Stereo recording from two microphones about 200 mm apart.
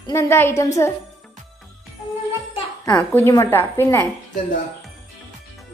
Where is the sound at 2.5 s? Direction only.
20° left (ahead or behind).